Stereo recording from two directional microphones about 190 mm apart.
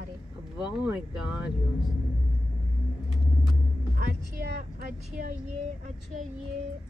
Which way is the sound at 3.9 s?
50° right (ahead or behind).